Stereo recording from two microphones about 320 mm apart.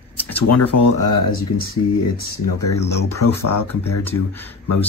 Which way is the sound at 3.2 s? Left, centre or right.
Left.